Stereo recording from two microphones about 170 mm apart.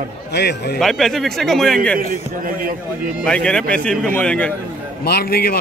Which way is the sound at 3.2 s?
5° left (ahead or behind).